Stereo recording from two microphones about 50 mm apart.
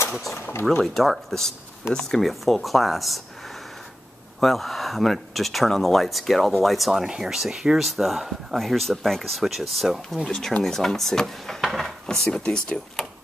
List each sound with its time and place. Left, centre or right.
0.3 s speech: left
0.8 s speech: centre
4.4 s speech: centre
9.4 s speech: centre
12.3 s speech: centre